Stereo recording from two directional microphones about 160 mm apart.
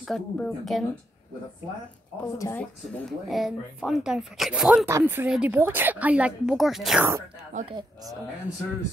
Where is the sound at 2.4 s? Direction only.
20° left (ahead or behind).